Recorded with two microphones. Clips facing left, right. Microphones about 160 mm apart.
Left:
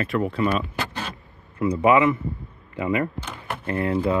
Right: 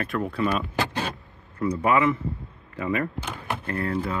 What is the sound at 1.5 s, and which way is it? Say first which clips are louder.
Speech: left 4 dB; 20° left (ahead or behind).